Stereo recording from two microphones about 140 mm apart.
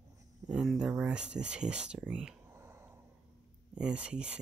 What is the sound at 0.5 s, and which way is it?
Speech, 5° right (ahead or behind).